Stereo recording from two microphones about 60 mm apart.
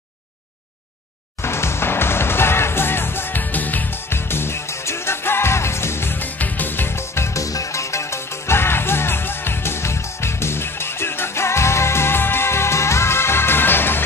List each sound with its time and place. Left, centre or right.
1.4 s music: left
4.1 s music: left
7.4 s music: left